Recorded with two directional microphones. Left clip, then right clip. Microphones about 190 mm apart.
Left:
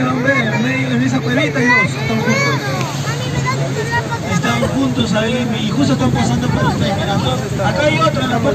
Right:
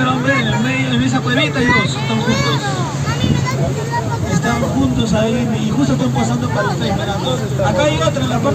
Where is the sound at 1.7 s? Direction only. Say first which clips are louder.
Left 2 dB; 5° right (ahead or behind).